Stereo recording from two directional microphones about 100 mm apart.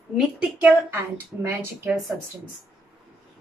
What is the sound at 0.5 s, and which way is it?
A woman's voice, 20° right (ahead or behind).